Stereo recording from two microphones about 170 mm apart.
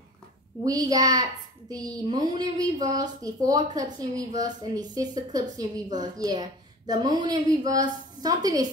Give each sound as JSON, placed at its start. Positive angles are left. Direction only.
{"t": 0.7, "sound": "speech", "side_deg": -20}